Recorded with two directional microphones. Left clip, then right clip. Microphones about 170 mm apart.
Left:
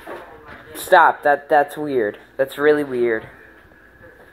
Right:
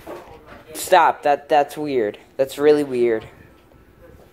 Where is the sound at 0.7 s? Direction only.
15° right (ahead or behind).